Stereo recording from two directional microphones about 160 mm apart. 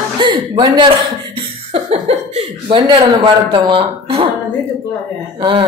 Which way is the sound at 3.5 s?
30° right (ahead or behind).